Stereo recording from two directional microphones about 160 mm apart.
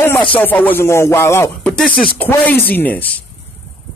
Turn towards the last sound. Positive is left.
turn(degrees=10)  # may be behind; listen again after turning